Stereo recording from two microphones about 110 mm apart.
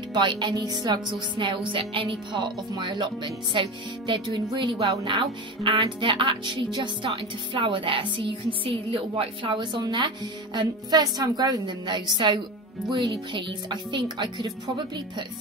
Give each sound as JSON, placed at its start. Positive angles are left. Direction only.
{"t": 0.1, "sound": "speech", "side_deg": -45}